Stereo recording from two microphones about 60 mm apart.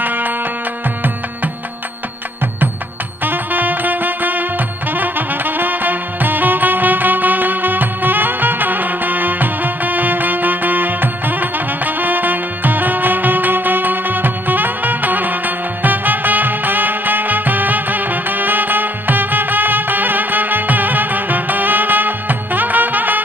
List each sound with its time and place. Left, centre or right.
0.0 s music: right
3.3 s music: right